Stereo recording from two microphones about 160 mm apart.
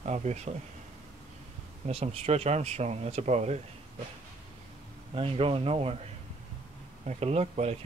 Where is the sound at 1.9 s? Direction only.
40° right (ahead or behind).